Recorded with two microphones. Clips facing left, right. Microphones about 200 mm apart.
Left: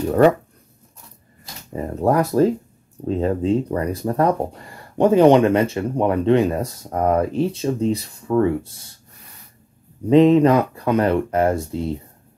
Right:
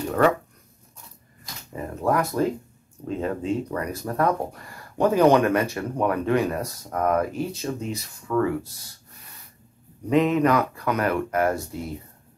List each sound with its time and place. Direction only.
1.7 s speech: 30° left (ahead or behind)
10.0 s speech: 30° left (ahead or behind)